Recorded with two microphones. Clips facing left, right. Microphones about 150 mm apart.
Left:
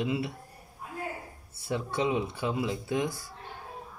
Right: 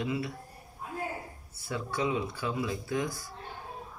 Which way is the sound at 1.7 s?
25° left (ahead or behind).